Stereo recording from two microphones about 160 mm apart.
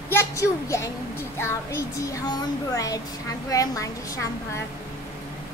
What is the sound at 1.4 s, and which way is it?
Speech, 20° left (ahead or behind).